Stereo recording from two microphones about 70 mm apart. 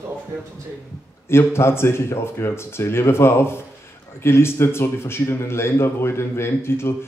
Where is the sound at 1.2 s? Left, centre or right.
Left.